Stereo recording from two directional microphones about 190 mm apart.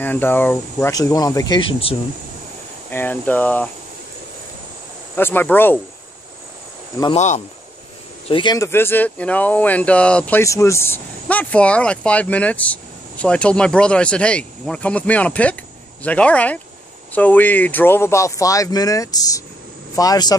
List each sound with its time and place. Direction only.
0.0 s speech: 10° left (ahead or behind); by 2.0 s 30° left (ahead or behind)
2.9 s speech: 10° left (ahead or behind)
5.1 s speech: 10° left (ahead or behind)
7.2 s speech: 40° left (ahead or behind)
8.3 s speech: 25° left (ahead or behind)